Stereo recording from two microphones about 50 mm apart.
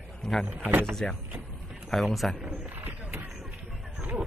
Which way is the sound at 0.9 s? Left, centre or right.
Centre.